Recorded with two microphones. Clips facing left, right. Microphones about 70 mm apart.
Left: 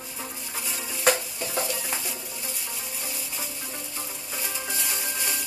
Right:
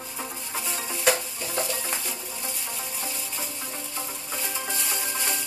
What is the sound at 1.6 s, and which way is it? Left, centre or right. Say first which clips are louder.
Stir: right 1 dB; centre.